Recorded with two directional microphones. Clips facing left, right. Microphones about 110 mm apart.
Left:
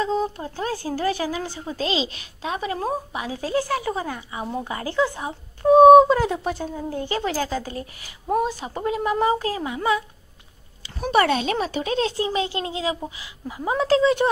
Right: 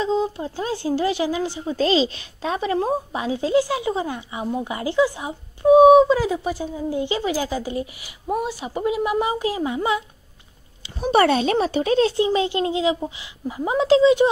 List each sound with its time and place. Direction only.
0.0 s a woman's voice: 20° right (ahead or behind)
1.8 s a woman's voice: 35° right (ahead or behind); by 5.9 s 10° right (ahead or behind)
6.0 s speech: centre (ahead or behind); by 10.0 s 25° right (ahead or behind)
11.1 s a woman's voice: 35° right (ahead or behind); by 14.3 s 15° right (ahead or behind)